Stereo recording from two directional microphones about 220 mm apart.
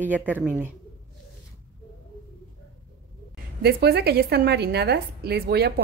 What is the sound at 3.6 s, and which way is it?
A woman's voice, 45° right (ahead or behind).